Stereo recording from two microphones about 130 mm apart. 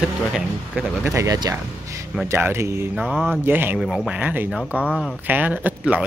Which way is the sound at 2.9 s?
5° right (ahead or behind).